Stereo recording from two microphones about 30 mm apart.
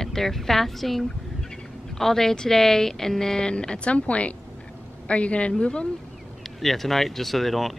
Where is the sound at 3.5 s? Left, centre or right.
Left.